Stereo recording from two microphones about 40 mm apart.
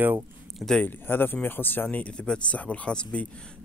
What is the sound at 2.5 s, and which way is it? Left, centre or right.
Speech, left.